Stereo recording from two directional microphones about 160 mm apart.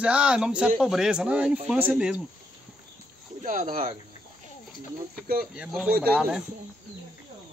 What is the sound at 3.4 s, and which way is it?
Speech, 60° right (ahead or behind).